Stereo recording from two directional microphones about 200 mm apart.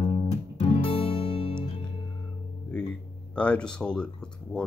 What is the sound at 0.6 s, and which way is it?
Music, 25° left (ahead or behind).